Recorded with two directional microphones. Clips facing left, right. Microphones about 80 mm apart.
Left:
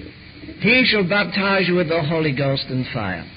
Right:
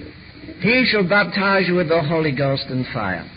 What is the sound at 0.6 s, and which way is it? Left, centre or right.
A man's voice, right.